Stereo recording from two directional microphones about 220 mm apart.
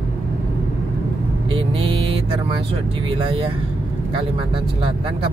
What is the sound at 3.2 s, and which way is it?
Speech, 25° right (ahead or behind).